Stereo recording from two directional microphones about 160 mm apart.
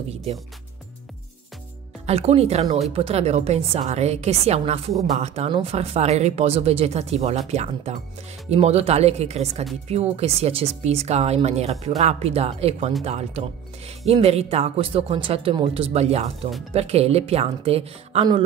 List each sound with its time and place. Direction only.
2.0 s speech: 40° right (ahead or behind)